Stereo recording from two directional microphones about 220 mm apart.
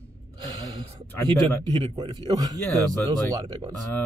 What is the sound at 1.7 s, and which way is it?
Speech, 20° right (ahead or behind).